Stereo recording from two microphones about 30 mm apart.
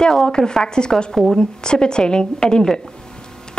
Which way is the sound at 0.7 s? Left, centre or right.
Left.